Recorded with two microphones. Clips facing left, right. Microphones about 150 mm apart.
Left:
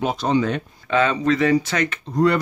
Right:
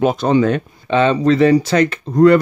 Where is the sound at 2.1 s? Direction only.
55° right (ahead or behind).